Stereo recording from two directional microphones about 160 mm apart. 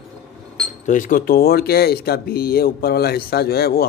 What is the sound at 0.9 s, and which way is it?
Speech, 55° left (ahead or behind).